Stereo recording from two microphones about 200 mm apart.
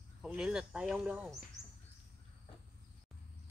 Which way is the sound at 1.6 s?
Centre (ahead or behind).